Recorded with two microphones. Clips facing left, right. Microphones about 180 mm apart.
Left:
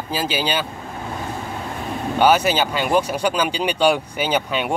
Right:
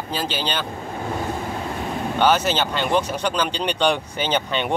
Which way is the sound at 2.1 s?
10° left (ahead or behind).